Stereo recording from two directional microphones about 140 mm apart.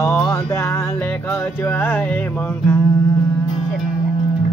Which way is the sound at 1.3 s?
15° left (ahead or behind).